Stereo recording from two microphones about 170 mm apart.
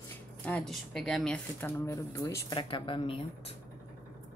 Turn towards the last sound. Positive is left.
turn(degrees=35)  # may be behind; listen again after turning